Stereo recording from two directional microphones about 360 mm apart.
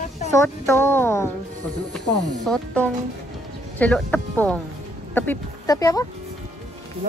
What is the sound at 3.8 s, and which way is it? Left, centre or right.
Speech, centre.